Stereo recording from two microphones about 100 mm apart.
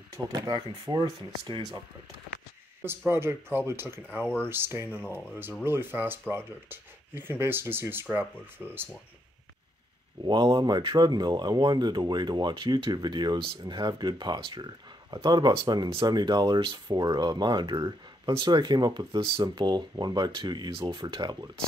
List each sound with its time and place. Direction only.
0.1 s speech: 40° right (ahead or behind)
3.1 s speech: 25° right (ahead or behind)
10.2 s speech: 45° right (ahead or behind)
19.4 s speech: 45° right (ahead or behind)